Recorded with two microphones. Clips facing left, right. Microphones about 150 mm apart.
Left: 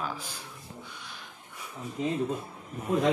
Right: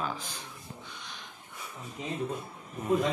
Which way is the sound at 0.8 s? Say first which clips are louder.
Even; 5° left (ahead or behind).